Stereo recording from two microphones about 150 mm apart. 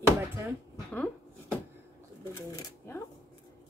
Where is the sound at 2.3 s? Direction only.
15° left (ahead or behind).